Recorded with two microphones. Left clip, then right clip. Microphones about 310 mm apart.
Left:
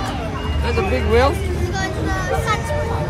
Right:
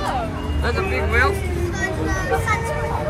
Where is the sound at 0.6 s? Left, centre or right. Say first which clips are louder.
Left 2 dB; centre.